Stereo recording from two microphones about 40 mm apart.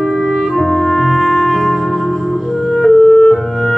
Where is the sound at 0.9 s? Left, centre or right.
Centre.